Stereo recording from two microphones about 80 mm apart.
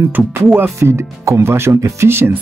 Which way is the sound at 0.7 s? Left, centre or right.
Right.